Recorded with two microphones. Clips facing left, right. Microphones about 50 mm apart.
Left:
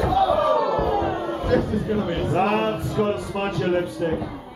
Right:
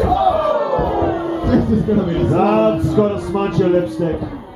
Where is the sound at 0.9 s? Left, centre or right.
Centre.